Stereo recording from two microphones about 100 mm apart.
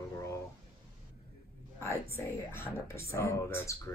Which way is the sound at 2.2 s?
25° left (ahead or behind).